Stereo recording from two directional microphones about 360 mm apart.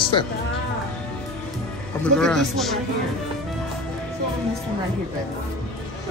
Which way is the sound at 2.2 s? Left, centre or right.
Centre.